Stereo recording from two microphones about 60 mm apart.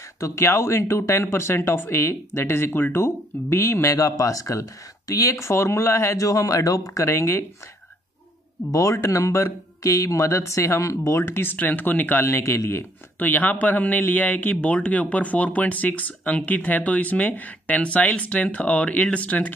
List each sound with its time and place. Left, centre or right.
0.2 s speech: left
6.1 s a man's voice: left
7.1 s speech: left
8.7 s speech: left
11.2 s speech: left
12.3 s speech: left
13.2 s speech: left